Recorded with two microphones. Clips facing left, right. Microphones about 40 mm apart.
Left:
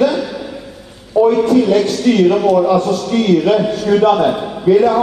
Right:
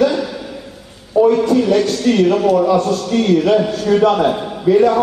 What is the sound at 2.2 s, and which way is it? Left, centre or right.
Speech, centre.